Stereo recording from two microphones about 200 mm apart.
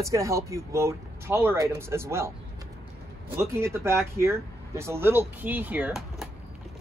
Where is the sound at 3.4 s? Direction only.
10° right (ahead or behind).